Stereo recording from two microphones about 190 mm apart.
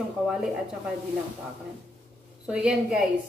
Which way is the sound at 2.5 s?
5° right (ahead or behind).